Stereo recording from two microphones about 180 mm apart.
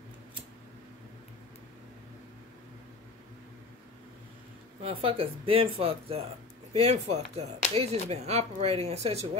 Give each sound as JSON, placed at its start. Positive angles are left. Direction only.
{"t": 4.8, "sound": "speech", "side_deg": -30}